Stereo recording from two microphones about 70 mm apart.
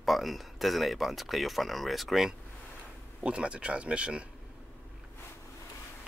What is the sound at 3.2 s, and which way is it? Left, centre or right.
Speech, centre.